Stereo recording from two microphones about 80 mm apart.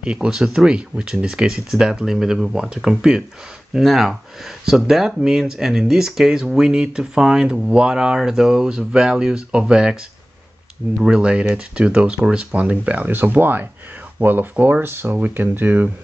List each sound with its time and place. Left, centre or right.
0.0 s speech: centre
11.0 s speech: centre